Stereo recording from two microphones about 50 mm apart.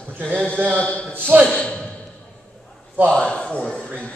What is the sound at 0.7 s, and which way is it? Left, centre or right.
Speech, left.